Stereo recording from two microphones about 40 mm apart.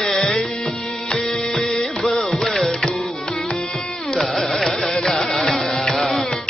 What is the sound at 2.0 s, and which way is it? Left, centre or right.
Music, centre.